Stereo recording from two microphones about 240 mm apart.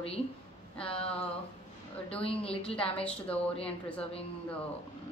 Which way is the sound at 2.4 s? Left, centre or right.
Left.